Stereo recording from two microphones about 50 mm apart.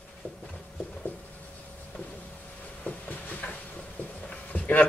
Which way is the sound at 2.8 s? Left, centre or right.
Left.